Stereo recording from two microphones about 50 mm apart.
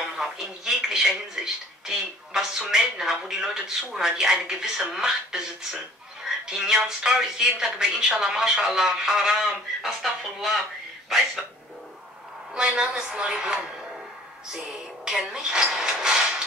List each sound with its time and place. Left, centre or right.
0.0 s speech: centre
12.5 s speech: centre